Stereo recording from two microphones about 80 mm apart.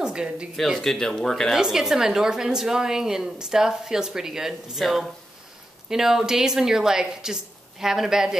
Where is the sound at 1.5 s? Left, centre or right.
Centre.